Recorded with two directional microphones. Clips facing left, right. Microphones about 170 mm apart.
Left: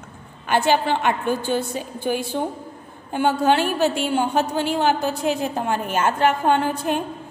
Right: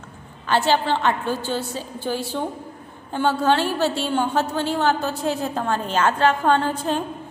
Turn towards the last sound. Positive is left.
turn(degrees=15)  # may be behind; listen again after turning